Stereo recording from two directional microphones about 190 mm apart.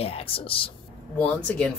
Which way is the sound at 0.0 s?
30° left (ahead or behind).